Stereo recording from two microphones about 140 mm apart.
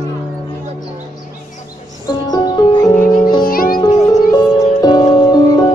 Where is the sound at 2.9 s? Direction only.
75° left (ahead or behind).